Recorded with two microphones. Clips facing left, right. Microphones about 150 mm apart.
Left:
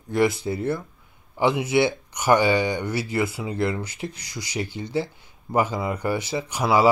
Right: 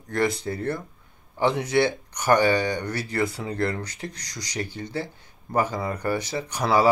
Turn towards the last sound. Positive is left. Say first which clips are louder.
# left 1 dB
turn(degrees=10)  # may be behind; listen again after turning